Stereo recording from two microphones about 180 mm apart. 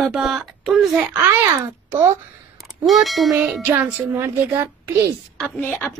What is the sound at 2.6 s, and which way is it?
A woman's voice, centre (ahead or behind).